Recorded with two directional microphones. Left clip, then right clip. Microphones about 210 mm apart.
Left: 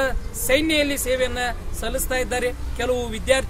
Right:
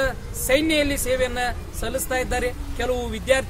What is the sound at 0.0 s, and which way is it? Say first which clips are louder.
A man's voice: left 1 dB; 5° left (ahead or behind).